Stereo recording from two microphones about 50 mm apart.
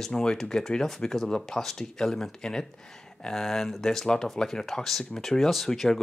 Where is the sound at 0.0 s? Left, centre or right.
Centre.